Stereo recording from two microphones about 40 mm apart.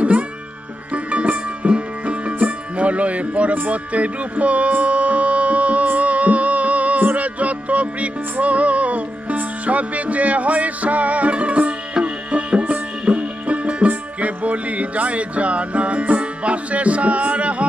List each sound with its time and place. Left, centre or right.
0.9 s music: right
13.8 s speech: right